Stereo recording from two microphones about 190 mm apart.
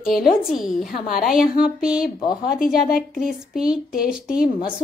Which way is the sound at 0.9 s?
50° left (ahead or behind).